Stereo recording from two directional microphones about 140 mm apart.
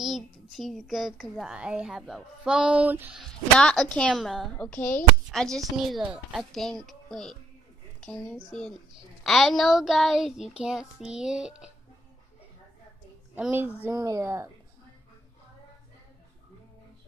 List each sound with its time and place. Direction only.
0.0 s speech: centre (ahead or behind)
3.2 s speech: 5° left (ahead or behind)
13.3 s a child's voice: 15° right (ahead or behind)
13.9 s speech: 25° right (ahead or behind)